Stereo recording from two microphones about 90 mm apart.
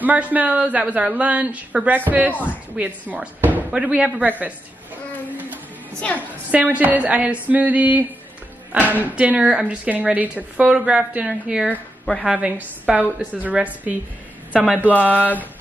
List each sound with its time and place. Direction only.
0.0 s a woman's voice: 20° right (ahead or behind)
6.1 s a woman's voice: 15° right (ahead or behind)
15.0 s speech: 20° left (ahead or behind)